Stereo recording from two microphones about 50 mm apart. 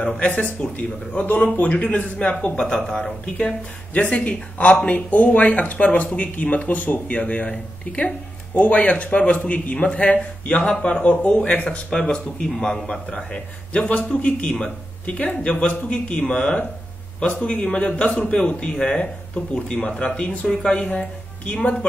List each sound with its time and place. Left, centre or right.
0.2 s speech: left
11.9 s speech: centre
20.4 s speech: centre
20.7 s speech: left